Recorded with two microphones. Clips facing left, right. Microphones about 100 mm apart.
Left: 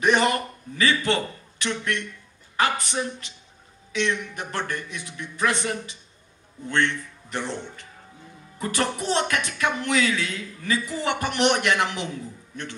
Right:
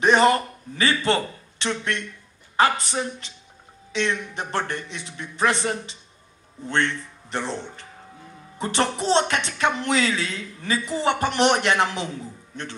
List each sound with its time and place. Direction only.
0.0 s a man's voice: 30° right (ahead or behind)